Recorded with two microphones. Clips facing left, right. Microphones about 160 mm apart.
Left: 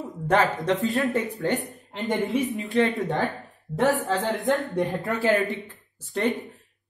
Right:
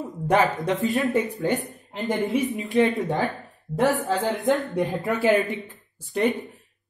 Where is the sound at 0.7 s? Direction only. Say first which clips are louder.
Even; 20° right (ahead or behind).